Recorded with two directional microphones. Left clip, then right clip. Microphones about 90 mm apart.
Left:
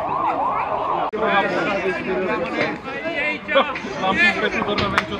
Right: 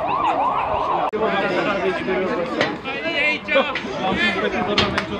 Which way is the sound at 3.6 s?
30° left (ahead or behind).